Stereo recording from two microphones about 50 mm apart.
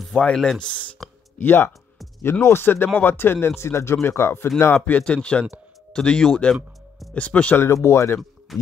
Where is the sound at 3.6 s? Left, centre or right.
Left.